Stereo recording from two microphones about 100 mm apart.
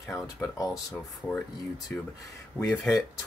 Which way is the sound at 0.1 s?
35° left (ahead or behind).